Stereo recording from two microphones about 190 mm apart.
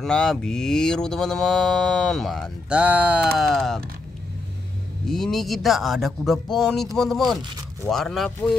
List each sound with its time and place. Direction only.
0.0 s mantra: 5° left (ahead or behind)
5.0 s mantra: centre (ahead or behind)